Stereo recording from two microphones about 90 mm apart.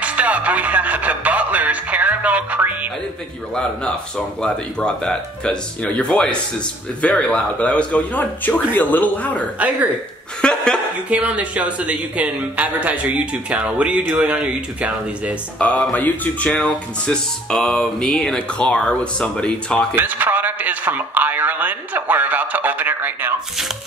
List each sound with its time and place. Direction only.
0.0 s speech: 15° right (ahead or behind)
4.4 s speech: 10° left (ahead or behind)
11.1 s speech: 15° right (ahead or behind)
15.6 s speech: 15° left (ahead or behind)
20.0 s a man's voice: 20° right (ahead or behind)